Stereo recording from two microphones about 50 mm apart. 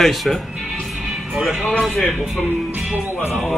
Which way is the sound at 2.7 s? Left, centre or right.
Centre.